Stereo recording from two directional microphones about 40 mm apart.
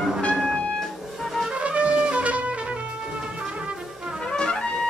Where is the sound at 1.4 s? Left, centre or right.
Right.